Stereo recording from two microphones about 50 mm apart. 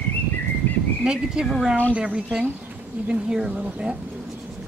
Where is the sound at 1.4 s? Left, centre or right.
Centre.